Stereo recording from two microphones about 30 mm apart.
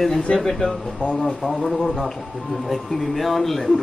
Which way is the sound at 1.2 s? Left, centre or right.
Centre.